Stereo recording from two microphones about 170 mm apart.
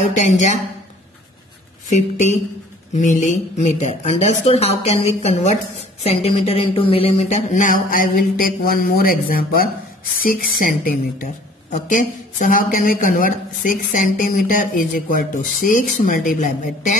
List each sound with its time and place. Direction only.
0.0 s a woman's voice: 45° left (ahead or behind)
1.9 s a woman's voice: 45° left (ahead or behind)